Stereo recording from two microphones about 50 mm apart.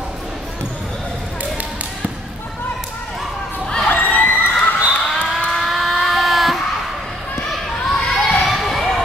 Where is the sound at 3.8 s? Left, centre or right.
Left.